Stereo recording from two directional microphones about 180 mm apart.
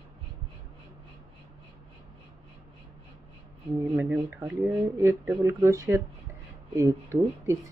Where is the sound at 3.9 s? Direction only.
10° right (ahead or behind).